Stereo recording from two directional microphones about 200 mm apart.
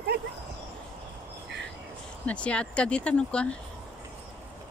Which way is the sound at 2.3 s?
5° left (ahead or behind).